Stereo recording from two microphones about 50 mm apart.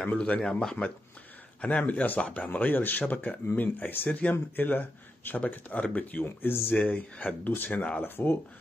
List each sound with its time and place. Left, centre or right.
0.5 s speech: centre
1.6 s speech: left
6.2 s speech: left
6.8 s speech: left